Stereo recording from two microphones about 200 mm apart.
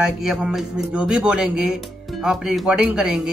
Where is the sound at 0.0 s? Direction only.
5° right (ahead or behind).